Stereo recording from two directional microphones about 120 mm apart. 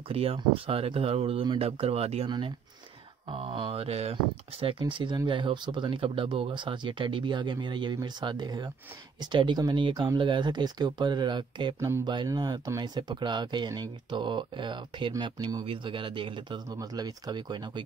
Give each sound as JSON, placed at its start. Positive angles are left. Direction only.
{"t": 0.1, "sound": "speech", "side_deg": -55}
{"t": 11.8, "sound": "speech", "side_deg": -30}
{"t": 15.6, "sound": "speech", "side_deg": -45}